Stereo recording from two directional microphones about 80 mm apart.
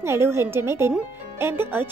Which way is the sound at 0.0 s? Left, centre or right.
Right.